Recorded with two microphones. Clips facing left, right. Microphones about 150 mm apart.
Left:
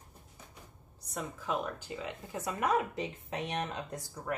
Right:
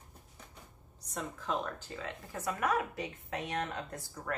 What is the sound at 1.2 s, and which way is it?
Speech, 10° left (ahead or behind).